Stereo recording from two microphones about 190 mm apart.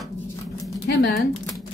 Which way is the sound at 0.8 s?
60° left (ahead or behind).